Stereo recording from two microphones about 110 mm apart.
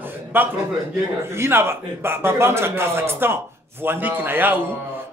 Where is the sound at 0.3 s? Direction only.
20° right (ahead or behind).